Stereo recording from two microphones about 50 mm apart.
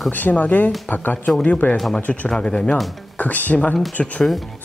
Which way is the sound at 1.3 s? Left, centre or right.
Centre.